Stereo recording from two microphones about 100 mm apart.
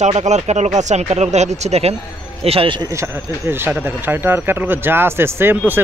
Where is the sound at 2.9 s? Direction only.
25° right (ahead or behind).